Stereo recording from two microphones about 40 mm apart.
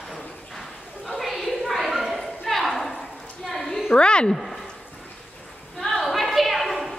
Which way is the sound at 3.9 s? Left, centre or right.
Left.